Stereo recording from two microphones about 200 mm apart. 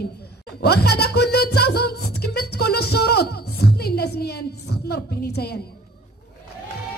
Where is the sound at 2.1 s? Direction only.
55° left (ahead or behind).